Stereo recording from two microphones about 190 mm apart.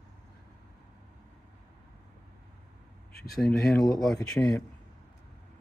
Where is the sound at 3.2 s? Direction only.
Centre (ahead or behind).